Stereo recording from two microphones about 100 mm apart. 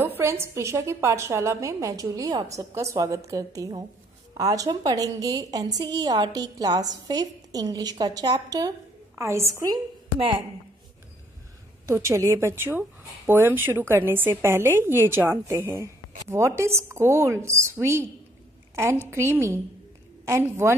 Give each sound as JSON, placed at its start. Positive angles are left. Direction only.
{"t": 0.0, "sound": "a woman's voice", "side_deg": -25}
{"t": 9.1, "sound": "a woman's voice", "side_deg": -30}
{"t": 10.1, "sound": "speech", "side_deg": -60}
{"t": 11.8, "sound": "a woman's voice", "side_deg": -30}
{"t": 19.0, "sound": "a woman's voice", "side_deg": -25}